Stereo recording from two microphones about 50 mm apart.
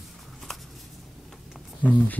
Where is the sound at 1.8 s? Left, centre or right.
Left.